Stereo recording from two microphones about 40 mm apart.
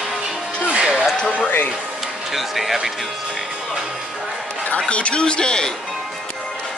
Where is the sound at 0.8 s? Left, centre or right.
Centre.